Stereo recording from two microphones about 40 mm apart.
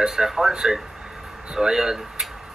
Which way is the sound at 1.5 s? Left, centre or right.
Centre.